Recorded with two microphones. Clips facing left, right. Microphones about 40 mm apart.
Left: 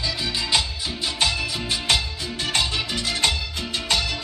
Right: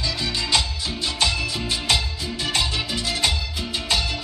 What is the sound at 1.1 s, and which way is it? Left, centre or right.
Music, centre.